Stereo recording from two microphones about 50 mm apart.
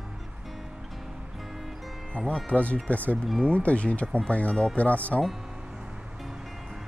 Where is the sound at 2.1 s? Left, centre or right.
Left.